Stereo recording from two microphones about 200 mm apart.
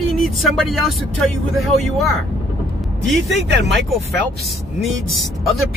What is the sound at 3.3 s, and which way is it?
Speech, 60° right (ahead or behind).